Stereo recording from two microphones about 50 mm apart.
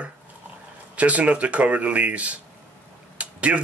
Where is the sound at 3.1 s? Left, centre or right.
Right.